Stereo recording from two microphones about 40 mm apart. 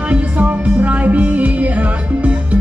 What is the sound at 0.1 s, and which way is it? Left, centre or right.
Music, right.